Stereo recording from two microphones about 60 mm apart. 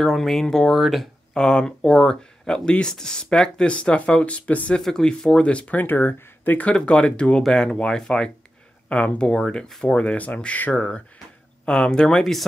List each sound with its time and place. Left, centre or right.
0.0 s speech: centre
0.7 s speech: centre
1.3 s speech: centre
4.7 s speech: centre
5.9 s speech: left
6.7 s speech: centre
9.7 s speech: centre
9.9 s speech: left